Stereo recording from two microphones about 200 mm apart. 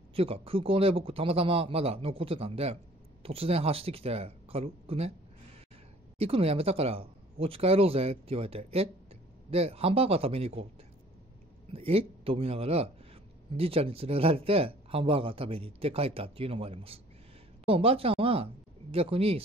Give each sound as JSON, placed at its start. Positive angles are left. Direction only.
{"t": 0.1, "sound": "a man's voice", "side_deg": -30}
{"t": 6.1, "sound": "a man's voice", "side_deg": -30}
{"t": 11.7, "sound": "a man's voice", "side_deg": -30}